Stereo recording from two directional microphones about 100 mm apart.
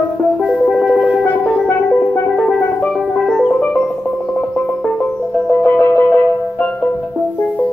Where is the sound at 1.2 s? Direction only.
20° left (ahead or behind).